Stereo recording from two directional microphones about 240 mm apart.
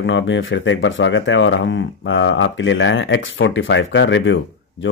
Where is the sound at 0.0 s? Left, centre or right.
Left.